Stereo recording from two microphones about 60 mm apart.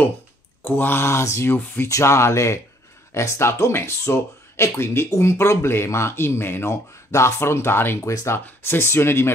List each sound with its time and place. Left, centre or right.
0.6 s speech: left